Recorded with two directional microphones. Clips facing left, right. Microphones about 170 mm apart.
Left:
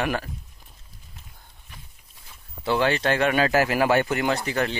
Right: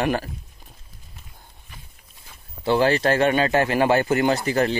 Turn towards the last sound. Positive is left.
turn(degrees=-35)  # may be behind; listen again after turning